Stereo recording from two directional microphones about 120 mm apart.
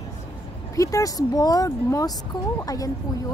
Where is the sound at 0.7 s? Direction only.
25° left (ahead or behind).